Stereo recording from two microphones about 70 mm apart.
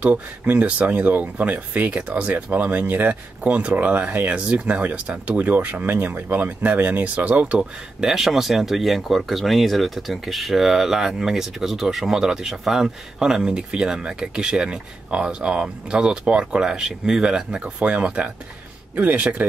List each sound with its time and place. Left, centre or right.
0.0 s speech: centre
7.5 s speech: centre